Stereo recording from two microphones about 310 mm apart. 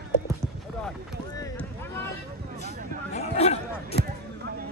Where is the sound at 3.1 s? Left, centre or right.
Centre.